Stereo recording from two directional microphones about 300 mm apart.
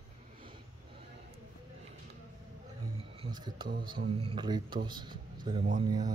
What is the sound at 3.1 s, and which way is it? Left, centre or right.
A man's voice, centre.